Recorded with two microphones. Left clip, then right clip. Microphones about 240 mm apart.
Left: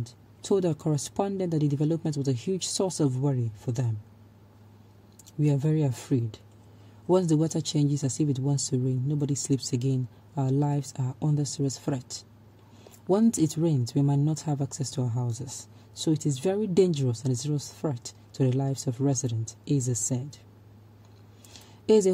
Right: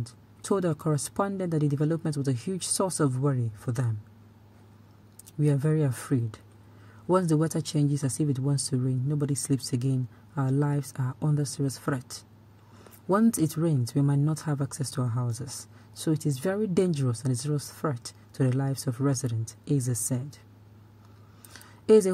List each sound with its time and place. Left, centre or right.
0.0 s speech: right
5.4 s speech: right
13.1 s speech: right
21.8 s speech: right